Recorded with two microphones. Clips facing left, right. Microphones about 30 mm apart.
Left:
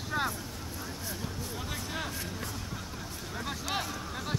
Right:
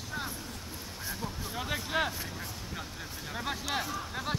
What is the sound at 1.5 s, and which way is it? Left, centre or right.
Vehicle, right.